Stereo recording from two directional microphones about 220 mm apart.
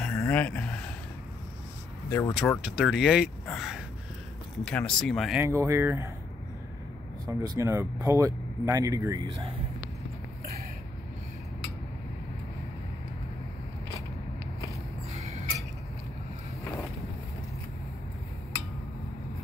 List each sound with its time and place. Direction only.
0.0 s a sound: 10° left (ahead or behind)
2.0 s speech: 10° left (ahead or behind)
2.6 s speech: centre (ahead or behind)
5.4 s speech: 15° right (ahead or behind)
7.2 s speech: 15° right (ahead or behind)